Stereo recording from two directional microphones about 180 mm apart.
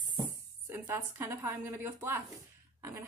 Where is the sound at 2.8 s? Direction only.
15° right (ahead or behind).